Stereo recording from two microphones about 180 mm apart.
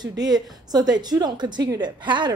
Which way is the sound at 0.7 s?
20° right (ahead or behind).